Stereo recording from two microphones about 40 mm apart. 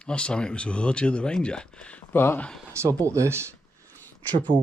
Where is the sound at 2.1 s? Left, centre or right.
Left.